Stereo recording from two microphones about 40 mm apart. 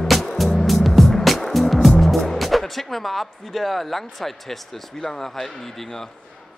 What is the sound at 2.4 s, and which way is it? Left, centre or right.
A man's voice, centre.